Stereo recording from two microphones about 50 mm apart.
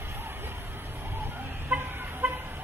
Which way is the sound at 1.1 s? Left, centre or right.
Right.